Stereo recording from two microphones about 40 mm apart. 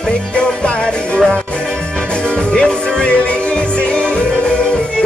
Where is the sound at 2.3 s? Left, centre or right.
Left.